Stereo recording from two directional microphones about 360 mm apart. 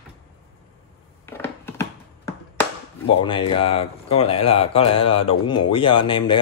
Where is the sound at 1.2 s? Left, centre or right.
Centre.